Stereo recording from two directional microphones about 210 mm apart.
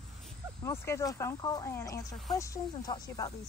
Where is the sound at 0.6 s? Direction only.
10° left (ahead or behind).